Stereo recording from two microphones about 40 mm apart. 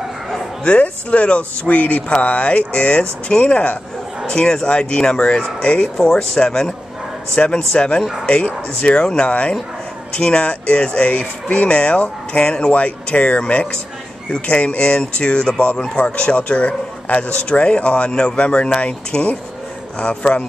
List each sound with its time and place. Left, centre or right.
0.7 s speech: left
4.3 s speech: centre
5.9 s speech: centre